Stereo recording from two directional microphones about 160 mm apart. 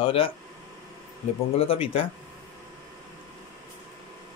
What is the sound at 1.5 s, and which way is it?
Speech, 35° left (ahead or behind).